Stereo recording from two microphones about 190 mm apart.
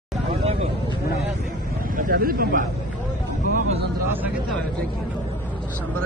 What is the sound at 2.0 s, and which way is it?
Speech, 50° right (ahead or behind).